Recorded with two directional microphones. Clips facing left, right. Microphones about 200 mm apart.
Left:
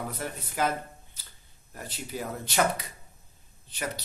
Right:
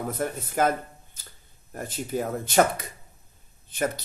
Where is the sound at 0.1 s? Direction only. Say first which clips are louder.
Right 7 dB; 50° right (ahead or behind).